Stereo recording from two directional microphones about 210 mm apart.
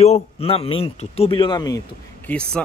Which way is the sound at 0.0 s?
30° left (ahead or behind).